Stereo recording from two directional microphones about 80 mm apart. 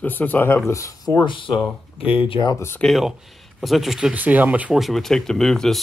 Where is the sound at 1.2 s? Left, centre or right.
Left.